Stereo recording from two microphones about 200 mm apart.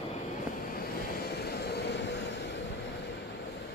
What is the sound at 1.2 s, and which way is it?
Vehicle, 55° left (ahead or behind).